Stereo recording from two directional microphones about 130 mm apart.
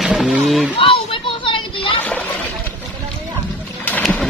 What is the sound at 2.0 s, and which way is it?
Splash, 10° left (ahead or behind).